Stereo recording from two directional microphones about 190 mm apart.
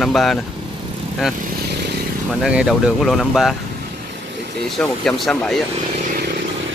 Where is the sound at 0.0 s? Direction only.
Centre (ahead or behind).